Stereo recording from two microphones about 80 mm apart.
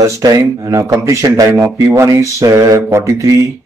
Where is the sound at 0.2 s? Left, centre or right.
Right.